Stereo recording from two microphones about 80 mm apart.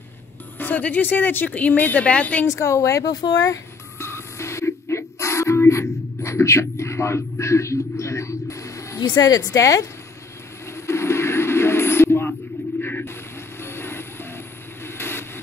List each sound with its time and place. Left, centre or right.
0.6 s speech: left
2.4 s speech: left
4.0 s a sound: left
9.2 s a woman's voice: left
10.7 s vehicle: left
12.8 s a sound: left
13.6 s vehicle: left